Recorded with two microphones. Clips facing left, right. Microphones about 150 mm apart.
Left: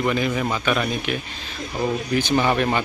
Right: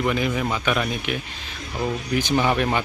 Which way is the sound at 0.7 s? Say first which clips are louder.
Left 1 dB; 10° right (ahead or behind).